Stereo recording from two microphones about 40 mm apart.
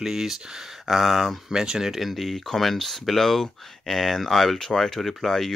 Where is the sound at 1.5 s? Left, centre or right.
Centre.